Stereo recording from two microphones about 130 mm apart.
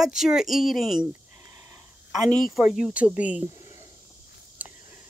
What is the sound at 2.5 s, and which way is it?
Speech, 5° right (ahead or behind).